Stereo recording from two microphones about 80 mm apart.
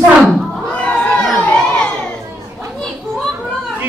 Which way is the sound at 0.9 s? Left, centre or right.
Centre.